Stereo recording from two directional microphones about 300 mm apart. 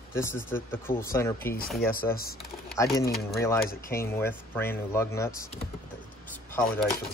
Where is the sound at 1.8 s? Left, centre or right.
Left.